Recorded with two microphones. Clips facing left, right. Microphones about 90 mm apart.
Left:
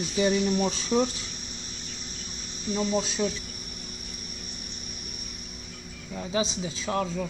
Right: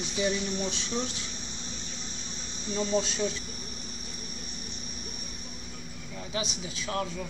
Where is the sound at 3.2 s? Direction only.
15° left (ahead or behind).